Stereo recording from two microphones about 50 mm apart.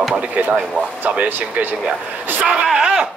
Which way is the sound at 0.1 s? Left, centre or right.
Right.